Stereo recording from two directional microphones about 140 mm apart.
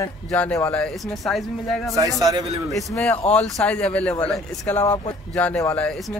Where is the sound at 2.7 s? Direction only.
5° left (ahead or behind).